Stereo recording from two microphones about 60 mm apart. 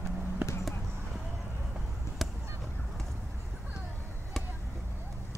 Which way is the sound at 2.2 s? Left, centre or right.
Centre.